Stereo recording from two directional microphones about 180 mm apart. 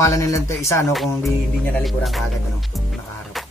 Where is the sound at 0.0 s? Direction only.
20° left (ahead or behind).